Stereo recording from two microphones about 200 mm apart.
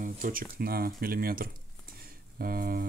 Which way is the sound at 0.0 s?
45° right (ahead or behind).